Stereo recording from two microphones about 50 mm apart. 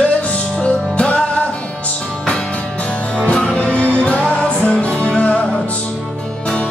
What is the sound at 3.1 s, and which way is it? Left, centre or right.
Music, centre.